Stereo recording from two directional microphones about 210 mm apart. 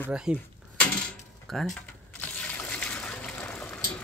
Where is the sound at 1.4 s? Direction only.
Centre (ahead or behind).